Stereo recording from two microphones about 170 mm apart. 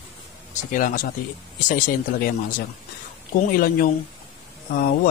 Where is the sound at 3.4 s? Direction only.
55° left (ahead or behind).